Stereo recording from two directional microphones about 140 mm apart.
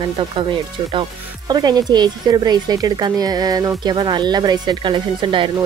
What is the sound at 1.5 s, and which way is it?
Speech, 30° right (ahead or behind).